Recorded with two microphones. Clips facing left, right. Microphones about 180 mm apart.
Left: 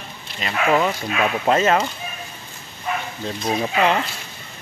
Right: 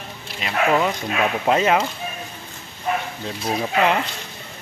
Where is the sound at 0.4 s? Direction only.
Centre (ahead or behind).